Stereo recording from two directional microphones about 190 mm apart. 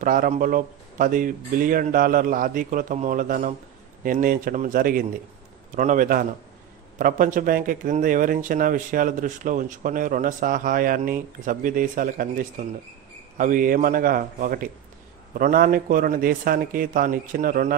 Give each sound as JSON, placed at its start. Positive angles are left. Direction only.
{"t": 0.0, "sound": "speech", "side_deg": -45}